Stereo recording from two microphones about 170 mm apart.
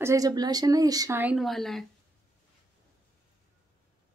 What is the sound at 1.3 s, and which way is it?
Speech, centre (ahead or behind).